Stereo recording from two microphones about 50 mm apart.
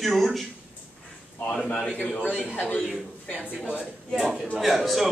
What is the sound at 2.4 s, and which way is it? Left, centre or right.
Speech, left.